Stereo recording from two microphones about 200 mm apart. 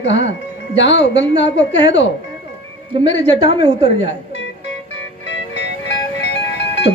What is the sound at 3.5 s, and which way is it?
Speech, 25° right (ahead or behind).